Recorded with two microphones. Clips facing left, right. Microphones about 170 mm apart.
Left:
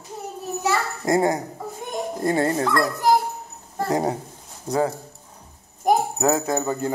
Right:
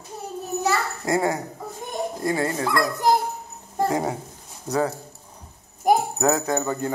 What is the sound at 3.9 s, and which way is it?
Speech, 35° left (ahead or behind).